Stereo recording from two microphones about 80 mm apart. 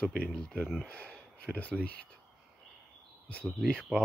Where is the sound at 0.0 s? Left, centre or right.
Centre.